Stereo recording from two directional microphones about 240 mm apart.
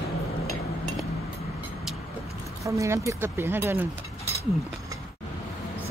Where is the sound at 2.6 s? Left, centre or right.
Centre.